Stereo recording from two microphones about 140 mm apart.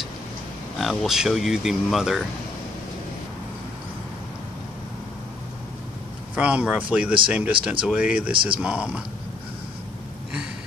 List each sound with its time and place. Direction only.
0.7 s speech: centre (ahead or behind)
6.3 s speech: 10° right (ahead or behind)
8.3 s speech: 35° right (ahead or behind)
8.5 s speech: 10° right (ahead or behind)